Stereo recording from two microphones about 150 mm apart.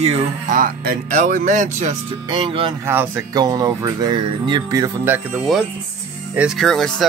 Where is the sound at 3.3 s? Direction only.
25° right (ahead or behind).